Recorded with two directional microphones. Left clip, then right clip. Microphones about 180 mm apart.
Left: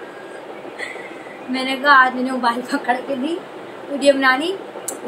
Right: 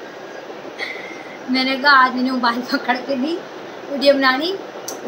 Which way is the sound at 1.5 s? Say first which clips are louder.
Right 1 dB; centre (ahead or behind).